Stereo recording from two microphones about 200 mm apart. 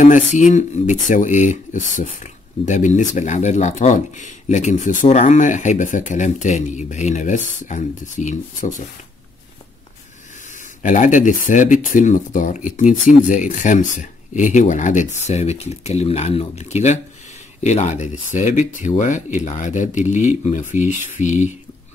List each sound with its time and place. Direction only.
0.0 s speech: 40° left (ahead or behind)
10.8 s speech: 40° left (ahead or behind)